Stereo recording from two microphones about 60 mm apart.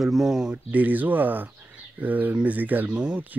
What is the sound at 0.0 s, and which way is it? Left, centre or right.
Speech, centre.